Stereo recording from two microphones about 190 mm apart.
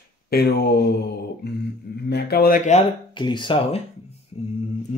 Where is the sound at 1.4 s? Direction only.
60° left (ahead or behind).